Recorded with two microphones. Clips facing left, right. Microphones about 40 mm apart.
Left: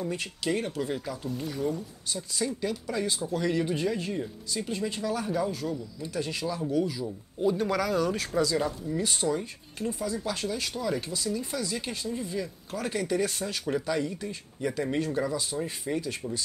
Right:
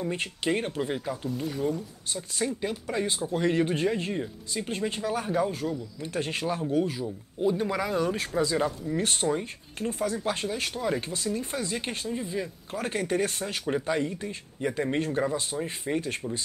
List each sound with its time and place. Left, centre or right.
0.1 s speech: right
4.6 s speech: right
7.1 s speech: centre
8.9 s speech: right
12.1 s speech: right